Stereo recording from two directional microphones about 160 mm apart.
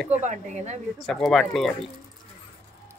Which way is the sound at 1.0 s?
Centre (ahead or behind).